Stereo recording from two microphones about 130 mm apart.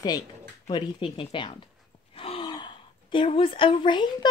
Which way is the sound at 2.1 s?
45° left (ahead or behind).